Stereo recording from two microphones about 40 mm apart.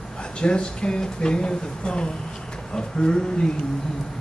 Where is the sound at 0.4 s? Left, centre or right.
Left.